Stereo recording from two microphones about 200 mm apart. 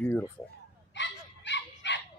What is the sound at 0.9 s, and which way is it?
Dog, 60° left (ahead or behind).